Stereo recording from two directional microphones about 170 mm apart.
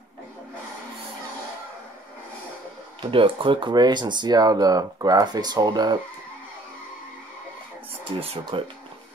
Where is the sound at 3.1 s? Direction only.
30° right (ahead or behind).